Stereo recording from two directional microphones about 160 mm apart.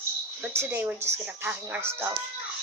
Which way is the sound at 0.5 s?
15° right (ahead or behind).